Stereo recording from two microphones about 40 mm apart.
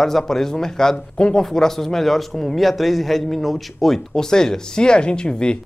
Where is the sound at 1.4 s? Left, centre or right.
Centre.